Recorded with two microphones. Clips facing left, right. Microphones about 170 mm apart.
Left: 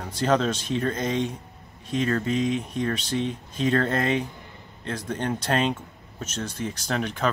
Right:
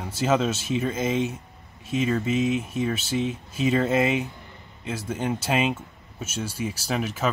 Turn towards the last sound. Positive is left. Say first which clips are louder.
# even
turn(degrees=-5)  # may be behind; listen again after turning